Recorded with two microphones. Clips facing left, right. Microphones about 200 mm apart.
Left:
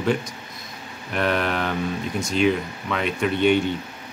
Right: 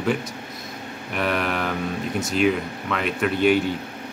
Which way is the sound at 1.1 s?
5° right (ahead or behind).